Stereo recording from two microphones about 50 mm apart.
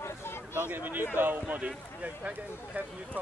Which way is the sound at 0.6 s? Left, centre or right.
Right.